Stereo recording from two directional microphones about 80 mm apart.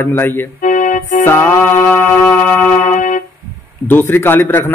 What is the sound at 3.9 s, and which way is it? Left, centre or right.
Speech, left.